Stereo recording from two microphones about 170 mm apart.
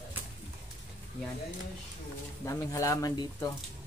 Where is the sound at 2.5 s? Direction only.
20° left (ahead or behind).